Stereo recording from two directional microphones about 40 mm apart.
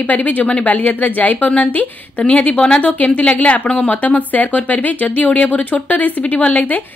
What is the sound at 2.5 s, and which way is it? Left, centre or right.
Speech, left.